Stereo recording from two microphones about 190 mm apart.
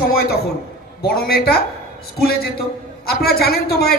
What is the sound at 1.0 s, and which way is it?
Speech, 55° left (ahead or behind).